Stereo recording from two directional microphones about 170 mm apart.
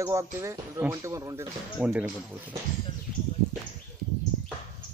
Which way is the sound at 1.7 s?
10° right (ahead or behind).